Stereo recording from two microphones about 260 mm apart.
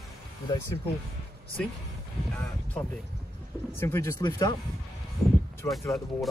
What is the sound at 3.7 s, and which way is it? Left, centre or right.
Speech, centre.